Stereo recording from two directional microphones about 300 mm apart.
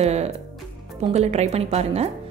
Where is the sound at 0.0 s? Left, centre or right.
Right.